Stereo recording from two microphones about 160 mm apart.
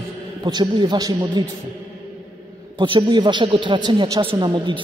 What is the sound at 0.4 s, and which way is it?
A man's voice, 30° right (ahead or behind).